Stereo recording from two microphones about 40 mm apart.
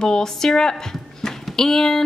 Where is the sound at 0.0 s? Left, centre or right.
Centre.